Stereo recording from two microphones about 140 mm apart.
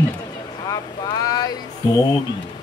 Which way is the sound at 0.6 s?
25° left (ahead or behind).